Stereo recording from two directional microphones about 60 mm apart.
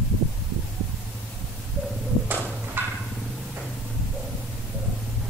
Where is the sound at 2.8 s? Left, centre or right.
Right.